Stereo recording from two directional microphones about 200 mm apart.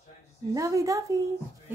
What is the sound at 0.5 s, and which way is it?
Speech, 15° right (ahead or behind).